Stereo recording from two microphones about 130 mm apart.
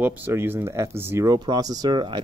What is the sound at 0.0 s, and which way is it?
Speech, 15° right (ahead or behind).